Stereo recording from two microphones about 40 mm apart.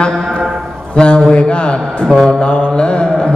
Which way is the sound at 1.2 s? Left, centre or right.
Centre.